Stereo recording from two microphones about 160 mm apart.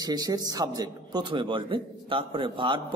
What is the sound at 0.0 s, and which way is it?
A man's voice, 25° right (ahead or behind).